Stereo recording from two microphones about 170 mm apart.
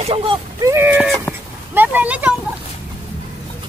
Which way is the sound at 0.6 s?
20° right (ahead or behind).